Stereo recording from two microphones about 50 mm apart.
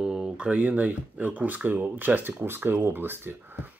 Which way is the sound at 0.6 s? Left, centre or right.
Right.